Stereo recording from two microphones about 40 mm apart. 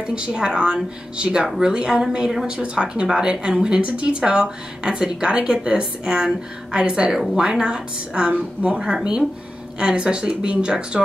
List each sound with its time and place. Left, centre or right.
0.0 s a woman's voice: right